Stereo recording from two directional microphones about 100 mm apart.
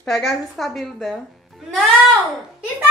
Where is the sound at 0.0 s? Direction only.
5° left (ahead or behind).